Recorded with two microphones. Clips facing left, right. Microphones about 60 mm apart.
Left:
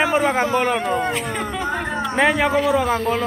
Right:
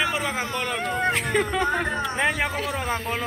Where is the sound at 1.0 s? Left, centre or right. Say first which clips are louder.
Even; right.